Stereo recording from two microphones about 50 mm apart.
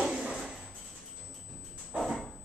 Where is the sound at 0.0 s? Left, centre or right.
Centre.